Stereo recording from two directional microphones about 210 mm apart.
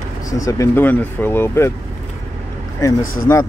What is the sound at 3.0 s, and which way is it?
Speech, 80° left.